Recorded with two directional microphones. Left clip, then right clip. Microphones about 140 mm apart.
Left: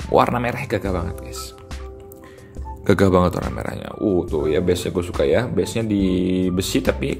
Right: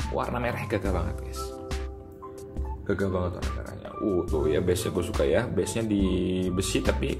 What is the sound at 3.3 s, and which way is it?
Speech, centre (ahead or behind).